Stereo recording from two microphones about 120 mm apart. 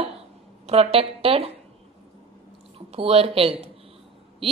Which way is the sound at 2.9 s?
55° right (ahead or behind).